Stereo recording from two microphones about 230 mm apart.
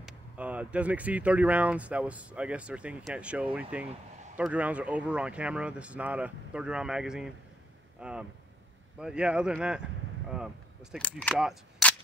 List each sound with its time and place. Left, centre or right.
0.0 s speech: centre